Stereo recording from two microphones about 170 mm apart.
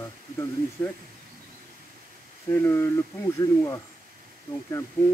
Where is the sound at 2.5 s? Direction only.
15° left (ahead or behind).